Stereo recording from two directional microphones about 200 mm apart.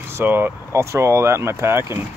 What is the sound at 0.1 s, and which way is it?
Speech, 10° right (ahead or behind).